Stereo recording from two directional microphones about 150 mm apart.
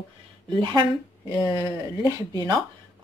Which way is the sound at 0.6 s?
30° right (ahead or behind).